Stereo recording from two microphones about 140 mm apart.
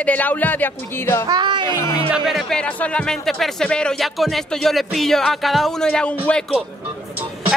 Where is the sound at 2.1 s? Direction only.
Centre (ahead or behind).